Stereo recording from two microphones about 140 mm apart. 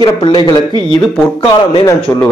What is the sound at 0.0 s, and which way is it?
Speech, 30° left (ahead or behind).